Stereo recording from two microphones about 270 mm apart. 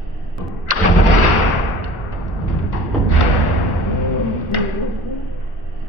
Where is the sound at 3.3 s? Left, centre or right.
Right.